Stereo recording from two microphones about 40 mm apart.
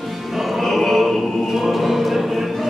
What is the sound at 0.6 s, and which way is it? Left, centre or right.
Choir, centre.